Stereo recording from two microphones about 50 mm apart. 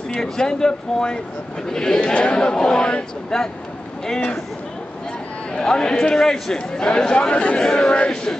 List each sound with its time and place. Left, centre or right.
0.1 s a man's voice: centre
5.5 s a man's voice: centre